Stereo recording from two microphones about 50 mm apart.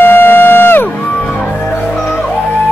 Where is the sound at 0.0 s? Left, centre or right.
Left.